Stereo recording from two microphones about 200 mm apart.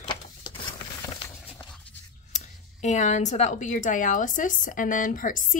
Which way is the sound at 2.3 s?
35° left (ahead or behind).